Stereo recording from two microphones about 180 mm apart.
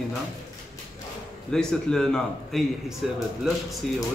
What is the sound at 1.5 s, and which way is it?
A man's voice, 5° left (ahead or behind).